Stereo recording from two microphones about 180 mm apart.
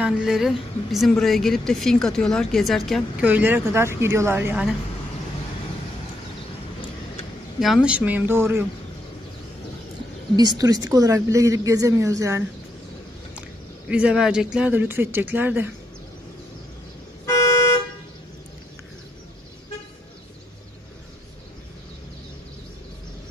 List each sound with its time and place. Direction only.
0.0 s a woman's voice: 5° right (ahead or behind)
7.6 s speech: 5° right (ahead or behind)
10.3 s a woman's voice: 20° right (ahead or behind)
13.8 s speech: 5° right (ahead or behind)